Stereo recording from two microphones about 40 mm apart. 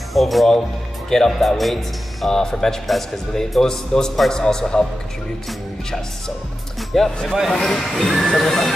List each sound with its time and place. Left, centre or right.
0.1 s speech: centre
2.2 s speech: centre
6.9 s speech: centre